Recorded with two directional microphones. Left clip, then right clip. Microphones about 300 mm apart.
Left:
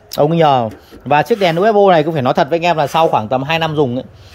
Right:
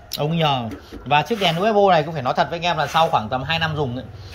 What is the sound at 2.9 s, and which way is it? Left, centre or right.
Speech, left.